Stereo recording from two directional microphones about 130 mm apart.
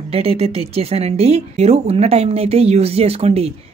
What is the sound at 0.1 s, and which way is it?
Speech, 45° right (ahead or behind).